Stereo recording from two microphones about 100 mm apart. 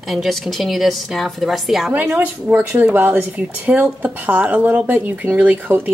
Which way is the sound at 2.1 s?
15° right (ahead or behind).